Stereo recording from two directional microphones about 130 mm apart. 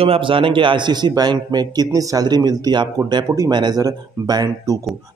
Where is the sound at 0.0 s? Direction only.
45° right (ahead or behind).